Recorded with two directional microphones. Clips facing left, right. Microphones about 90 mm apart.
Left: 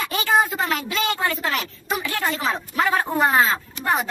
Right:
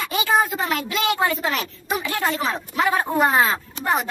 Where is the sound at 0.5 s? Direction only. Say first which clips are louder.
Even; 15° right (ahead or behind).